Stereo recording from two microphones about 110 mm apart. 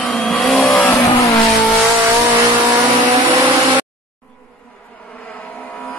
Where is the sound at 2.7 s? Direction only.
35° right (ahead or behind).